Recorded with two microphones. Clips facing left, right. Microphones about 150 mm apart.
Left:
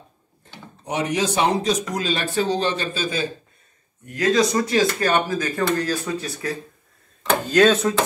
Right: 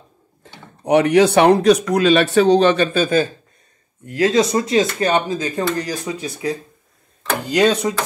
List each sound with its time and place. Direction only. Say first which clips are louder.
0.8 s speech: right 10 dB; 65° right (ahead or behind)
4.0 s speech: right 3 dB; 25° right (ahead or behind)